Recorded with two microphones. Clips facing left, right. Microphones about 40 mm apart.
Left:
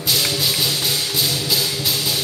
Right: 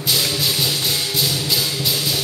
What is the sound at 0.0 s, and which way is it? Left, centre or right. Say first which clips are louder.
Music: even; centre.